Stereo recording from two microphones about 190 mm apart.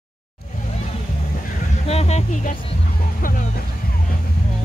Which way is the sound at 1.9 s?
35° left (ahead or behind).